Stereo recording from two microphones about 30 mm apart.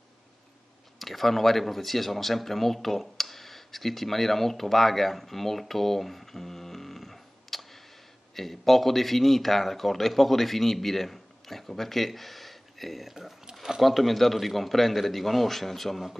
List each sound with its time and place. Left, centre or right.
0.9 s speech: centre
13.5 s a sound: centre
13.7 s speech: centre